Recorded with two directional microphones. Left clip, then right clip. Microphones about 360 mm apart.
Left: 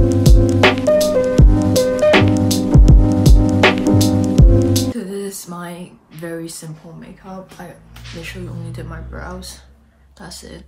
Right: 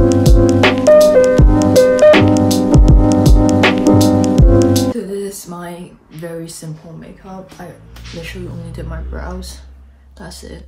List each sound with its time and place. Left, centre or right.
0.0 s music: centre
8.2 s speech: centre